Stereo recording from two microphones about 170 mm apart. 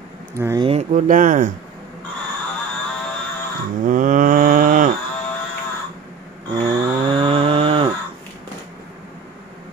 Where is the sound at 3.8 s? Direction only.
50° right (ahead or behind).